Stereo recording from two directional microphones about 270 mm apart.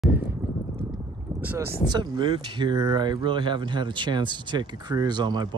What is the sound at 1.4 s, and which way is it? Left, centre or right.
Speech, centre.